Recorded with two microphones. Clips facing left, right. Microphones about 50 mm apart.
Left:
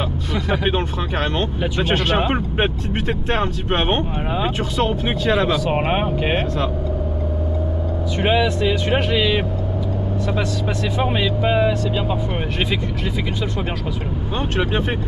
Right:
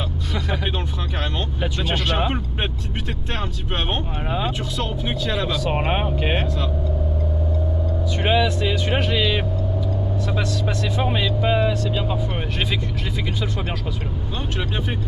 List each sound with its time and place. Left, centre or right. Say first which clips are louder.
0.7 s speech: left 6 dB; left
1.3 s speech: left 5 dB; centre
4.3 s speech: even; centre
5.6 s speech: left 3 dB; centre
8.2 s speech: left 2 dB; centre
11.0 s speech: left 3 dB; centre
14.6 s speech: left 6 dB; left